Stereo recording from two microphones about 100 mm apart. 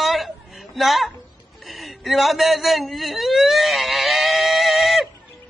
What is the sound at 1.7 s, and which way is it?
Whimper, centre (ahead or behind).